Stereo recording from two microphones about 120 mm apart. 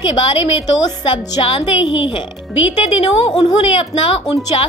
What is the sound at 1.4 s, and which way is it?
Speech, 50° left (ahead or behind).